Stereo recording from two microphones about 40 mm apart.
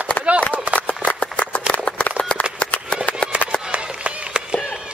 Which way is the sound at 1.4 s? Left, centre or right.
Left.